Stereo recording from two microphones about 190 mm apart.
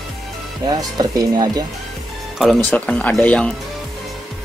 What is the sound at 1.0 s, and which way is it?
Speech, 20° right (ahead or behind).